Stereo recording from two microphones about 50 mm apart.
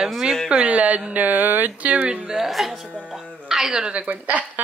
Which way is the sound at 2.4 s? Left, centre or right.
Centre.